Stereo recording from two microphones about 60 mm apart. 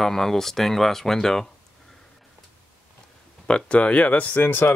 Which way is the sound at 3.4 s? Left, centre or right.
Centre.